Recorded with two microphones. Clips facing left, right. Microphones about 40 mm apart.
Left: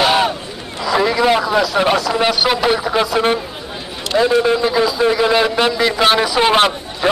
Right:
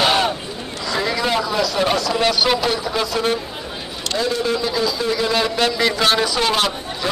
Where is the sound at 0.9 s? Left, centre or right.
Centre.